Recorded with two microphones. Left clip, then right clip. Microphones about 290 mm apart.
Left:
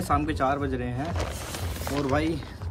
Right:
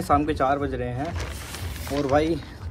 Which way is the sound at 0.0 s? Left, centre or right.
Centre.